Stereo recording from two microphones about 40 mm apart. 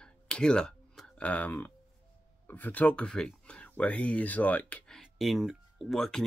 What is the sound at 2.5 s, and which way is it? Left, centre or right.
Speech, left.